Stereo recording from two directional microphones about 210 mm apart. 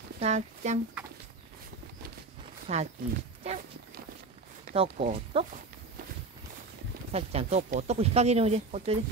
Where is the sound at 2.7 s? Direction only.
30° right (ahead or behind).